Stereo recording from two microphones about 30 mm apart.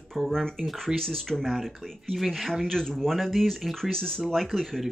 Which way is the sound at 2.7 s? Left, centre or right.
Centre.